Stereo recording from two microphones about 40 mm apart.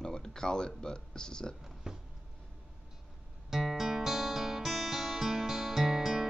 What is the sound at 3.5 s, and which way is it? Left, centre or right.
Guitar, centre.